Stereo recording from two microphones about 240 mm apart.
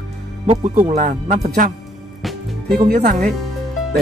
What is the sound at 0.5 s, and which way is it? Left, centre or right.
Speech, right.